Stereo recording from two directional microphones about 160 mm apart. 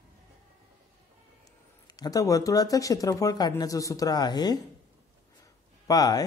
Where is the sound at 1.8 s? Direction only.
25° left (ahead or behind).